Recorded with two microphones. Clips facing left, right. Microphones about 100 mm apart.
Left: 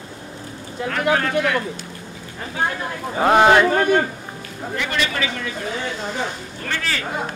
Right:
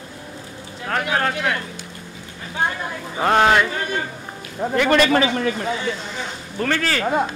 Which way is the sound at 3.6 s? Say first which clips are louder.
Left 8 dB; 55° left (ahead or behind).